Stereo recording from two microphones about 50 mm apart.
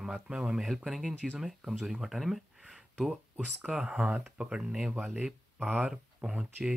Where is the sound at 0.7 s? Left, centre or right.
Centre.